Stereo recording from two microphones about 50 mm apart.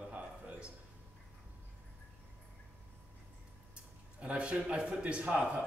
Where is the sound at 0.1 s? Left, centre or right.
Right.